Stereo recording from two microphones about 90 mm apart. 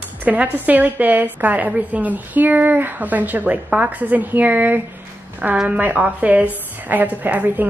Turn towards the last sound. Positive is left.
turn(degrees=-20)  # may be behind; listen again after turning